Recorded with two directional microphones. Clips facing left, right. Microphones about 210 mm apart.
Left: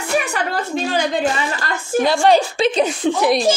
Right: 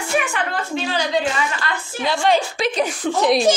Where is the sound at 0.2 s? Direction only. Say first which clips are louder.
Left 2 dB; 40° left (ahead or behind); by 3.1 s 25° left (ahead or behind).